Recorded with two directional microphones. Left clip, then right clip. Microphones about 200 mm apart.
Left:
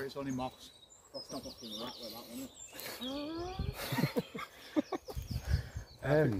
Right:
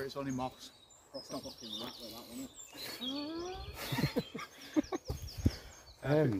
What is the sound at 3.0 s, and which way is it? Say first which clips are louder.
Speech: even; 30° left (ahead or behind).